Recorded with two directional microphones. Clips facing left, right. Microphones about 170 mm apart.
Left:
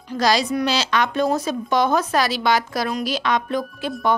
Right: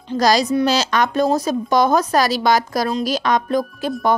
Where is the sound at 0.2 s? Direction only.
40° right (ahead or behind).